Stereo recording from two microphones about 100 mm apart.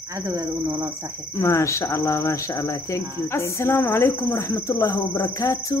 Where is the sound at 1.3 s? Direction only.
30° left (ahead or behind).